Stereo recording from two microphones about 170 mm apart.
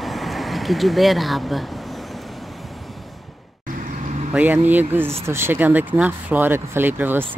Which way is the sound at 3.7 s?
50° right (ahead or behind).